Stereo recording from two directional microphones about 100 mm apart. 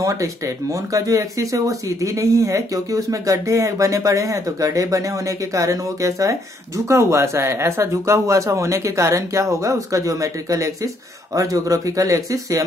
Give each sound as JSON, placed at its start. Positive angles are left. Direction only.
{"t": 0.0, "sound": "speech", "side_deg": -35}